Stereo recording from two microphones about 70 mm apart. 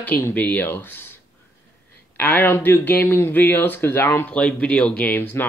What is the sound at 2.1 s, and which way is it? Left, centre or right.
Speech, left.